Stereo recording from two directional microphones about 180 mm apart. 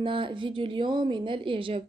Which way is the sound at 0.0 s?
30° right (ahead or behind).